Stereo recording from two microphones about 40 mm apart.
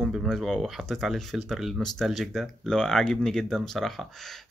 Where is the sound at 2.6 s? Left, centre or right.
Centre.